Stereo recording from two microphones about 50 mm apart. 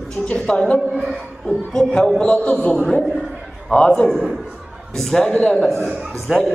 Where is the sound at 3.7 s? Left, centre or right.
Left.